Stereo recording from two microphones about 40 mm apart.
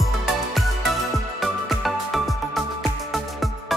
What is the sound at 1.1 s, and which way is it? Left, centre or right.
Music, centre.